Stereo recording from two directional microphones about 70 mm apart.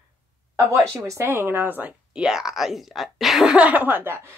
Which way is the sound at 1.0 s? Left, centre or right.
Right.